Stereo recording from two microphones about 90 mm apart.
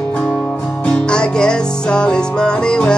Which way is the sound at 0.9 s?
10° left (ahead or behind).